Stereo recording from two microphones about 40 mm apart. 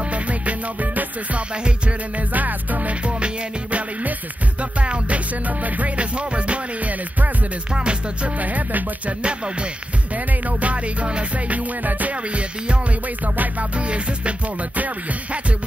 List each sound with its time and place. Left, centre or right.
0.1 s music: right
2.3 s music: right
4.6 s music: right
8.4 s music: right
9.2 s music: right